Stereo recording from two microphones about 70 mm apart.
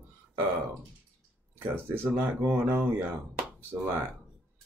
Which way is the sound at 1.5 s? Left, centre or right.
Right.